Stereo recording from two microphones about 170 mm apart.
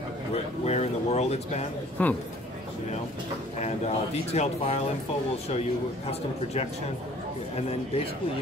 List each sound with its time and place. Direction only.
0.3 s a man's voice: 40° left (ahead or behind)
2.0 s speech: 10° left (ahead or behind)
3.6 s a man's voice: 40° left (ahead or behind)